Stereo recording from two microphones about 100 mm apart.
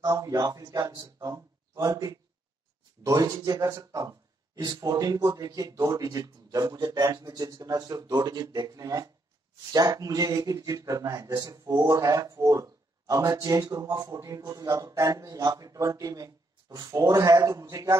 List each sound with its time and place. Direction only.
0.0 s a man's voice: 35° right (ahead or behind)